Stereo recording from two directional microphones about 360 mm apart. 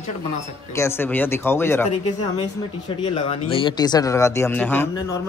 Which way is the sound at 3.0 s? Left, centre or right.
Centre.